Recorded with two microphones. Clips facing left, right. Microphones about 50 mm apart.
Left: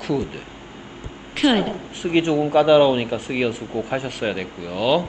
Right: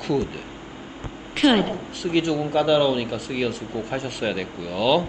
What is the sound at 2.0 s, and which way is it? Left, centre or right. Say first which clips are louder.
Speech: left 4 dB; left.